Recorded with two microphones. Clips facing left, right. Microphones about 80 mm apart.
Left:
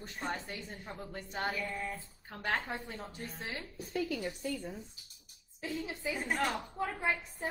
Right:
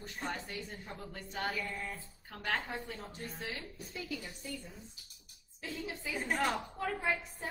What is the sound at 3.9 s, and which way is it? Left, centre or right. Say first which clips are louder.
Speech: left 8 dB; left.